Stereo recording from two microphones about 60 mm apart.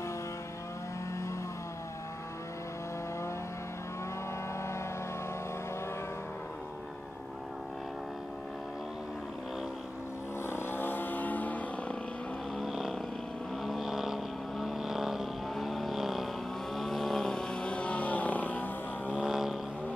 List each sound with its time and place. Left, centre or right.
10.4 s vehicle: left
12.6 s vehicle: centre; by 19.1 s left
19.2 s vehicle: centre